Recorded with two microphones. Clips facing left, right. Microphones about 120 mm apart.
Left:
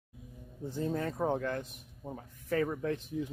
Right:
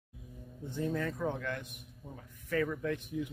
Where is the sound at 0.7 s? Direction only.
35° left (ahead or behind).